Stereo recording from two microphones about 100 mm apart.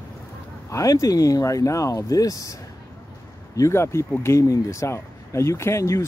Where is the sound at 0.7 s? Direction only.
35° left (ahead or behind).